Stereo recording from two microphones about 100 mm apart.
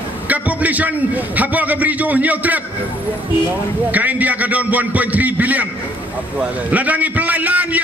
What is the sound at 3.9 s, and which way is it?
A man's voice, 15° right (ahead or behind).